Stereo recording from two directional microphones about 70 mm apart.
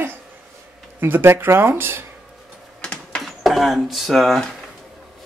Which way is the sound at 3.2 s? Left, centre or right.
Centre.